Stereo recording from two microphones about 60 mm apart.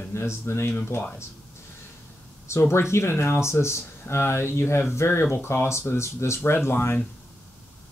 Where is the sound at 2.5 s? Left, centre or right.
Left.